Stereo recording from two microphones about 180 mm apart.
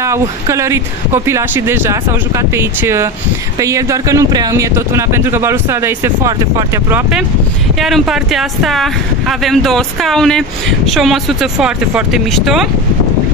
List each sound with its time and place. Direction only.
0.0 s speech: 15° right (ahead or behind)